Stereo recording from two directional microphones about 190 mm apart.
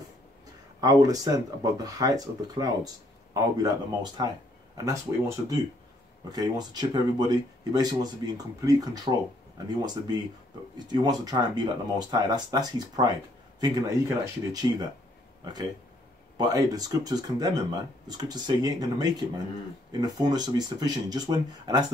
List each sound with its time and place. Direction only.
0.7 s speech: 20° right (ahead or behind)
16.3 s speech: 20° right (ahead or behind)